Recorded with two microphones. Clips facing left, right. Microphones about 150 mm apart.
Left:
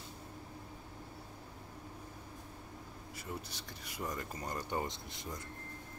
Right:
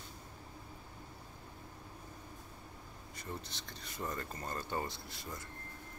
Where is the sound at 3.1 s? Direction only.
10° left (ahead or behind).